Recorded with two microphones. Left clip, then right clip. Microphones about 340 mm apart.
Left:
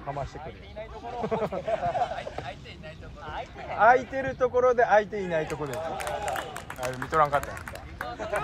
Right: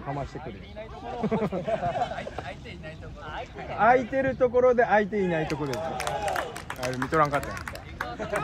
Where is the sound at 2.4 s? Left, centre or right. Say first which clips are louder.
Right 1 dB; centre.